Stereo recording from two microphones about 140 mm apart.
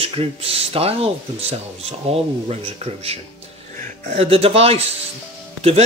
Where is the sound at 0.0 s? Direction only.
45° right (ahead or behind).